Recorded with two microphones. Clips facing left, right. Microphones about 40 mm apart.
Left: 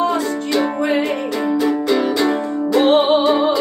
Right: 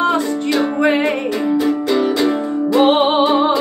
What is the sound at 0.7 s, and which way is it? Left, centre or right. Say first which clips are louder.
Music: right 3 dB; right.